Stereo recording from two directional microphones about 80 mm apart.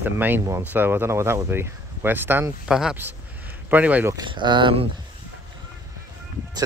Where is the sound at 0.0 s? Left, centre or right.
Right.